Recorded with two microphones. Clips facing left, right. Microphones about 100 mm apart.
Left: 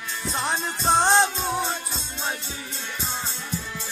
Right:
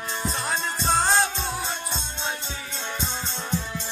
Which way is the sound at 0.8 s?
20° left (ahead or behind).